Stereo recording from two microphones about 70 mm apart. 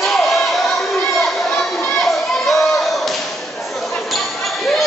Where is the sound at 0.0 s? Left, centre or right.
Centre.